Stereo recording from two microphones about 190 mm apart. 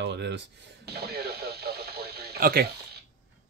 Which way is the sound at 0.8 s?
55° right (ahead or behind).